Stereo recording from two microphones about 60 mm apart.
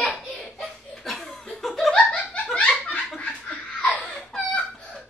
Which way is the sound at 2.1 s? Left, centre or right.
Left.